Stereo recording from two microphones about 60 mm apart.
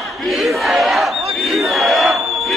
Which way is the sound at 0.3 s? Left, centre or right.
Centre.